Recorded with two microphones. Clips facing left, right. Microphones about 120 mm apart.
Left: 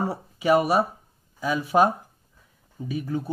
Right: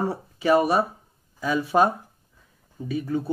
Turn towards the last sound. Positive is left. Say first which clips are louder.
# right 2 dB
turn(degrees=5)  # may be behind; listen again after turning